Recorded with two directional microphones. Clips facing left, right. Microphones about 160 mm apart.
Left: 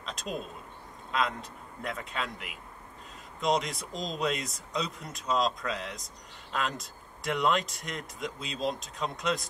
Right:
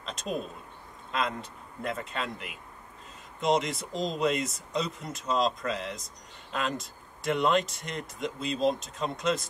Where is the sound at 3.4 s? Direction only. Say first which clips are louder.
Right 2 dB; centre (ahead or behind).